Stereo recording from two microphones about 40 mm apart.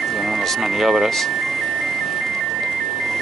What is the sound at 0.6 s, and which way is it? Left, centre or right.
Speech, centre.